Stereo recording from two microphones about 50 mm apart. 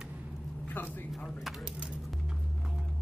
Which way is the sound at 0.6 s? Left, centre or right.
Left.